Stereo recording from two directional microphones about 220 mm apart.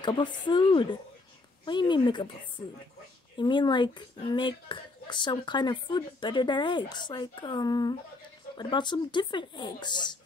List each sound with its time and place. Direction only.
0.0 s speech: 20° left (ahead or behind)
3.3 s speech: 20° left (ahead or behind)